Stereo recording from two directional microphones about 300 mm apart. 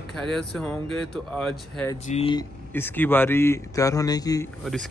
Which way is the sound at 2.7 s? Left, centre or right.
Centre.